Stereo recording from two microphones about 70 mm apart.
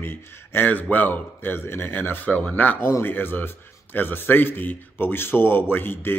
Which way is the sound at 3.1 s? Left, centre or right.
Left.